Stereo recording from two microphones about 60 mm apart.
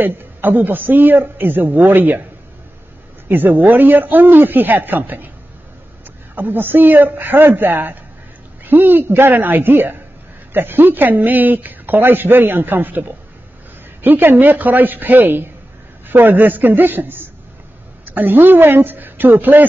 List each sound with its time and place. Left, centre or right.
0.0 s speech: right
3.3 s speech: right
6.3 s speech: right
14.0 s speech: right